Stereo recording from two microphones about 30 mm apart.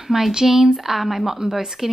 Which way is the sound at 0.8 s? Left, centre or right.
Centre.